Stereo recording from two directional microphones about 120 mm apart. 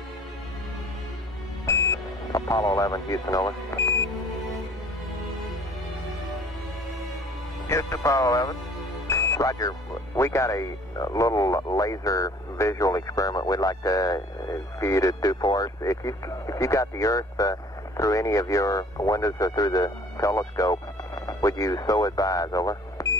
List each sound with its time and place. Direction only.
1.7 s music: 25° left (ahead or behind)
2.3 s speech: 30° left (ahead or behind)
7.6 s speech: 25° left (ahead or behind)